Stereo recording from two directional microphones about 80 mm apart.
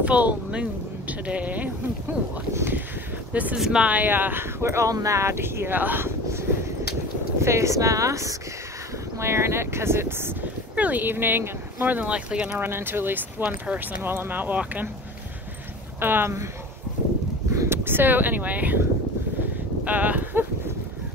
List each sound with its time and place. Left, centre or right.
0.0 s speech: centre
3.5 s speech: centre; by 6.4 s right
7.4 s speech: right; by 12.5 s centre
12.5 s speech: right
16.0 s speech: right
17.6 s speech: right
19.8 s a sound: right